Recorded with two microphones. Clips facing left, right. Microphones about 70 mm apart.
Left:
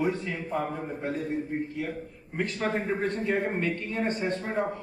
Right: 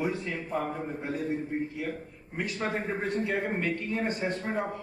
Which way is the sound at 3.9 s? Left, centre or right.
Centre.